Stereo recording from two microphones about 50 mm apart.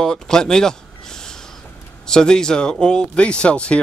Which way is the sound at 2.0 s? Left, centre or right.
Centre.